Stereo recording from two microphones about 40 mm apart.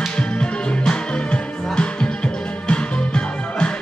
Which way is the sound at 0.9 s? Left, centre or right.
Left.